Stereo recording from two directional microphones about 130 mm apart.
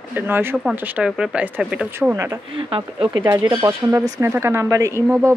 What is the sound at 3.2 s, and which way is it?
Speech, 15° right (ahead or behind).